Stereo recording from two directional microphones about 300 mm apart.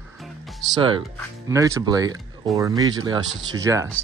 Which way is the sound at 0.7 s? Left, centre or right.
Centre.